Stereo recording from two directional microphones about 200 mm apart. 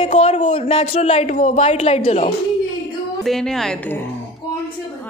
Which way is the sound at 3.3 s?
Centre (ahead or behind).